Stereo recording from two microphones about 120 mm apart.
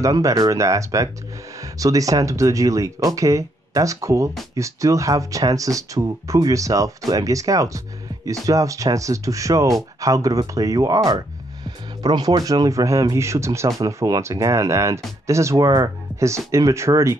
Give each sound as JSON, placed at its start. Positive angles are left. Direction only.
{"t": 0.0, "sound": "speech", "side_deg": -30}